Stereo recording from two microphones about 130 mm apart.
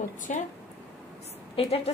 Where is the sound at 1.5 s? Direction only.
50° left (ahead or behind).